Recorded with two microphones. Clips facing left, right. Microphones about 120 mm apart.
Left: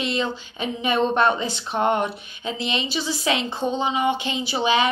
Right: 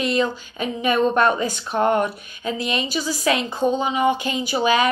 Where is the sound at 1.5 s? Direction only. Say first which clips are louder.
Right 2 dB; 25° left (ahead or behind).